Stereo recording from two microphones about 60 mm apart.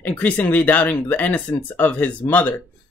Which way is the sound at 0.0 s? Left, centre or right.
Left.